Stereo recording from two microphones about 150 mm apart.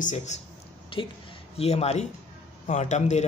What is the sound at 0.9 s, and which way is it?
A woman's voice, 35° left (ahead or behind).